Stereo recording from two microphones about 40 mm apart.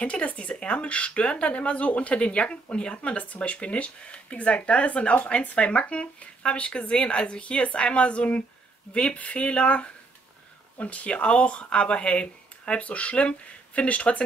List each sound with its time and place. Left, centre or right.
0.0 s speech: left